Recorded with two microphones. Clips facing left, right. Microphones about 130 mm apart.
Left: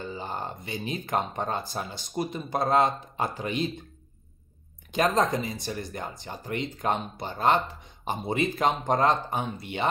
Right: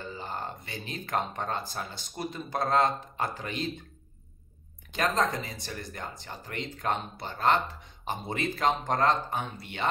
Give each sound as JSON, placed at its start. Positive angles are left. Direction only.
{"t": 0.1, "sound": "speech", "side_deg": 15}
{"t": 4.9, "sound": "speech", "side_deg": 15}